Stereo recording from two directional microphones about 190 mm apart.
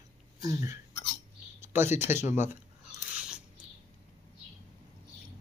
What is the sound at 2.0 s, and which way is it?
Speech, 10° right (ahead or behind).